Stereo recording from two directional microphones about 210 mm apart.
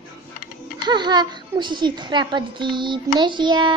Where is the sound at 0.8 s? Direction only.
20° right (ahead or behind).